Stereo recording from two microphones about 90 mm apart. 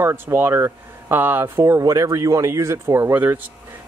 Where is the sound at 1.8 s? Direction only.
40° right (ahead or behind); by 3.4 s 25° right (ahead or behind).